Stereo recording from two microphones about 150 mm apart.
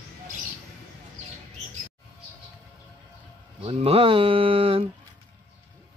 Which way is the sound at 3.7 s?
40° right (ahead or behind).